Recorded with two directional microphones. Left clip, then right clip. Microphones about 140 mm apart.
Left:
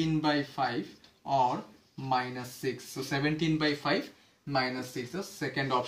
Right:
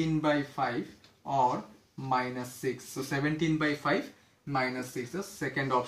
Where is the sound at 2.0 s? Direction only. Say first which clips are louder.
Even; 20° left (ahead or behind).